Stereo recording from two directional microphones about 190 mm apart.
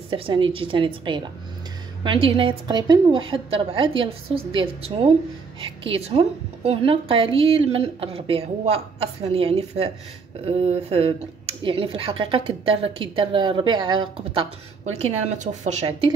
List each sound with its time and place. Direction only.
0.1 s a woman's voice: 25° right (ahead or behind)